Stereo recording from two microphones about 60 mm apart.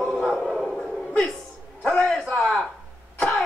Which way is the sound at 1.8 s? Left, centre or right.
Centre.